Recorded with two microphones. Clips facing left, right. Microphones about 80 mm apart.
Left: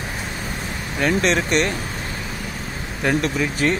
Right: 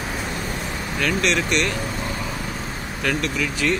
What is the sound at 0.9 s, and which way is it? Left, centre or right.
Speech, left.